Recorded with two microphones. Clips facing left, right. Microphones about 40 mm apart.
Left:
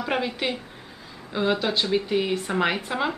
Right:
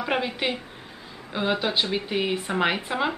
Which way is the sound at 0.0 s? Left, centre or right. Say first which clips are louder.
Even; centre.